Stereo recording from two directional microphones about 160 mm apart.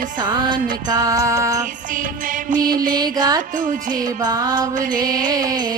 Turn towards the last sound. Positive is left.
turn(degrees=-25)  # may be behind; listen again after turning